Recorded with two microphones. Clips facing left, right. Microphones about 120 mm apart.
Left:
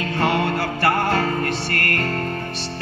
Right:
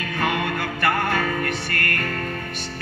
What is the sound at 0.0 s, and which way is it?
Music, 30° left (ahead or behind).